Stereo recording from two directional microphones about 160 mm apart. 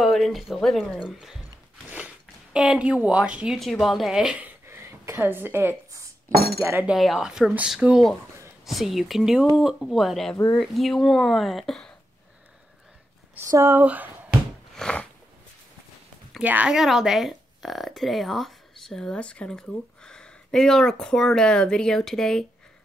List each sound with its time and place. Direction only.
0.0 s speech: centre (ahead or behind)
1.9 s speech: 10° right (ahead or behind)
6.3 s speech: 75° right (ahead or behind)
6.6 s speech: 15° right (ahead or behind)
6.9 s speech: centre (ahead or behind)
10.3 s speech: 20° left (ahead or behind)
10.6 s speech: centre (ahead or behind)
13.5 s speech: 15° right (ahead or behind)
14.8 s a sound: 5° left (ahead or behind)
16.3 s speech: 10° right (ahead or behind)